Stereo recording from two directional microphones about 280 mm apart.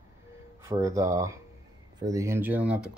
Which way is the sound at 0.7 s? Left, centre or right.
Centre.